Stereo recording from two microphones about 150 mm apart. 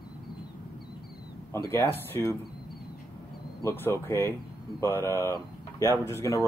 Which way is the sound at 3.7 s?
15° left (ahead or behind).